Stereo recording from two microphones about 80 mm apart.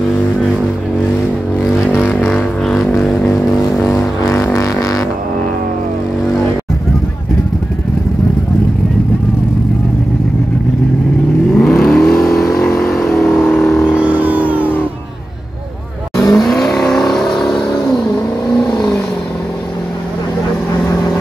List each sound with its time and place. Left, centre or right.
1.6 s vehicle: centre
4.2 s music: left
4.6 s a sound: left
11.5 s vehicle: centre
13.9 s vehicle: centre
16.2 s vehicle: centre